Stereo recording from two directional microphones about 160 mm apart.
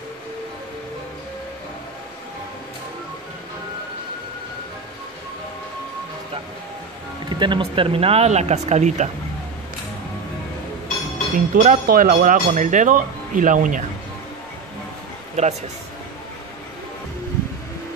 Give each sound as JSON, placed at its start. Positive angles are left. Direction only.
{"t": 7.2, "sound": "speech", "side_deg": -30}
{"t": 11.3, "sound": "speech", "side_deg": -55}
{"t": 11.8, "sound": "speech", "side_deg": -65}
{"t": 12.2, "sound": "speech", "side_deg": -55}
{"t": 15.4, "sound": "speech", "side_deg": -45}